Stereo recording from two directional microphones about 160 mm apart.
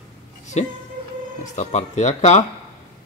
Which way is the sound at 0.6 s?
45° left (ahead or behind).